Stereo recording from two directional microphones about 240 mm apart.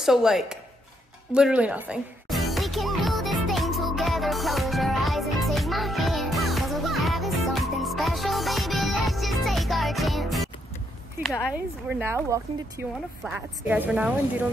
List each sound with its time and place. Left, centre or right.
0.0 s a woman's voice: centre
1.3 s music: centre
11.5 s speech: centre
13.2 s a woman's voice: centre